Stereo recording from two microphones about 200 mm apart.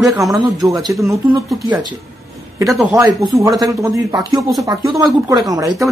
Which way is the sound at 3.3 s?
15° right (ahead or behind).